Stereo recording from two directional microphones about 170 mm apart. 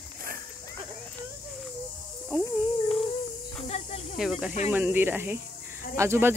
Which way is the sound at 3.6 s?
40° left (ahead or behind).